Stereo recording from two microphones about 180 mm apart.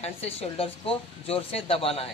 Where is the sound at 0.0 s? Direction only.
35° left (ahead or behind).